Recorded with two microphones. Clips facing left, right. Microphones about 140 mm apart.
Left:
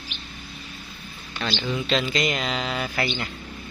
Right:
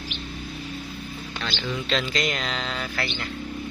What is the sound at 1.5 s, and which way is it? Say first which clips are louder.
Speech: left 4 dB; 20° left (ahead or behind).